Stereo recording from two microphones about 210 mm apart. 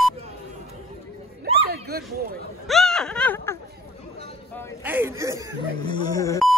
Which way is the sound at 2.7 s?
Centre (ahead or behind).